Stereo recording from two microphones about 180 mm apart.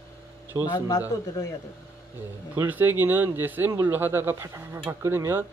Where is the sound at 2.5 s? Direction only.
10° right (ahead or behind).